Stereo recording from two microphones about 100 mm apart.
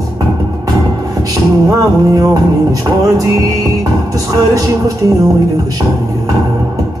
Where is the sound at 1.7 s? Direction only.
35° right (ahead or behind).